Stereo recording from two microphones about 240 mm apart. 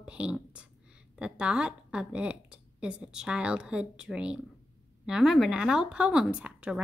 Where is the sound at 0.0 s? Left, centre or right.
Centre.